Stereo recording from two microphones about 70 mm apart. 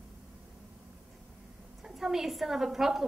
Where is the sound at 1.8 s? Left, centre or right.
Centre.